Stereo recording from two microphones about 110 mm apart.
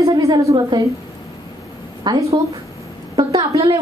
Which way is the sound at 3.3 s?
30° right (ahead or behind).